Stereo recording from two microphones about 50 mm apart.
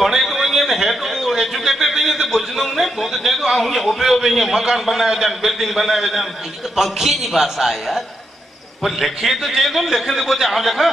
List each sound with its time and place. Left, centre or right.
0.0 s a man's voice: centre